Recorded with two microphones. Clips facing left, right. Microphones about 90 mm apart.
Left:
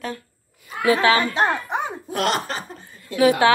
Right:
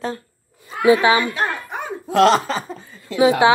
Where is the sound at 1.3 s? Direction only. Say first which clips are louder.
Left 3 dB; 25° left (ahead or behind).